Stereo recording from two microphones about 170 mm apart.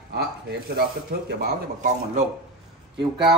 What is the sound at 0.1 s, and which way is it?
Speech, 70° right (ahead or behind).